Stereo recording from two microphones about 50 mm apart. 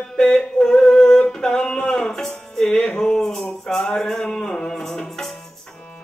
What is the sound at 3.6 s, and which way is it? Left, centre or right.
Music, centre.